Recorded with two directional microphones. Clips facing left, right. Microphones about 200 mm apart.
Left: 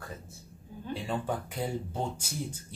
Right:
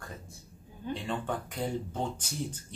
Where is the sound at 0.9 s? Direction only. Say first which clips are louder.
Left 1 dB; 10° left (ahead or behind).